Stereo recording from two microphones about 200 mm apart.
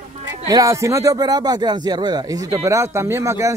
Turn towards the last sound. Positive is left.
turn(degrees=-15)  # may be behind; listen again after turning